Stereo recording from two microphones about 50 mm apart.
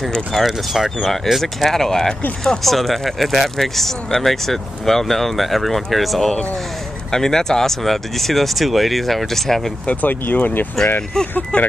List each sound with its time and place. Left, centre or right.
0.3 s speech: centre
1.1 s speech: centre
9.8 s speech: left
11.1 s speech: centre